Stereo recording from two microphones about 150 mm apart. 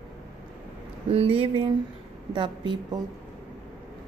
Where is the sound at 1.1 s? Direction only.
40° right (ahead or behind).